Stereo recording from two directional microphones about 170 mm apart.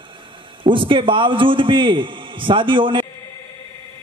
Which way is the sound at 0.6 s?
30° right (ahead or behind).